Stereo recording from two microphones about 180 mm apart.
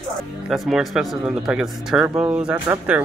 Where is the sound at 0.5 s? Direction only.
5° right (ahead or behind).